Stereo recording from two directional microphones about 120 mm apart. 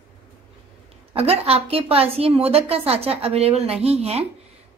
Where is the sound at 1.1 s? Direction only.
55° right (ahead or behind).